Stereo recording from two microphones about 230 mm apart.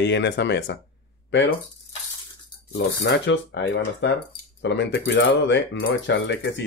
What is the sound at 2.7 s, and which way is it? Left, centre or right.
Speech, left.